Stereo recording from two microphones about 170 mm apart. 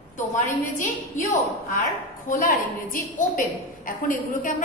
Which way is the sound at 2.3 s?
55° left (ahead or behind).